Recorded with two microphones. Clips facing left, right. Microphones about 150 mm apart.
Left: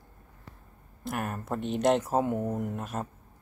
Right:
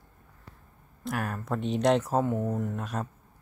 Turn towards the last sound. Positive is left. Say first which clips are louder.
# right 1 dB
turn(degrees=5)  # may be behind; listen again after turning